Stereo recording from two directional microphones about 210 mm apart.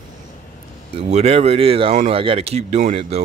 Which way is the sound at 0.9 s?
30° right (ahead or behind).